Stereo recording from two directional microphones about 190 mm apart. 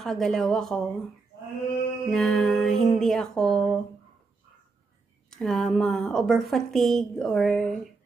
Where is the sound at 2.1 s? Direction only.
5° left (ahead or behind).